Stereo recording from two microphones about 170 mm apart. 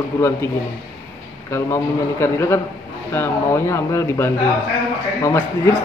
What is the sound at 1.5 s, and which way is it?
A man's voice, 15° left (ahead or behind).